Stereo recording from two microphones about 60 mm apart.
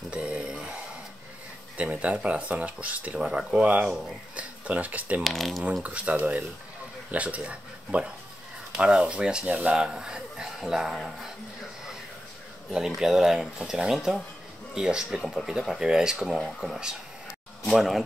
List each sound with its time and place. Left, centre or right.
0.1 s a sound: centre
1.8 s speech: right
3.2 s speech: centre
4.4 s speech: right
5.2 s speech: centre
5.8 s speech: right
8.7 s speech: centre
12.7 s speech: centre
16.3 s speech: centre